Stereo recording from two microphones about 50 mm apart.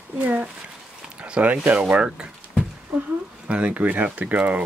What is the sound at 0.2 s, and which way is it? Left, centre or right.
Speech, right.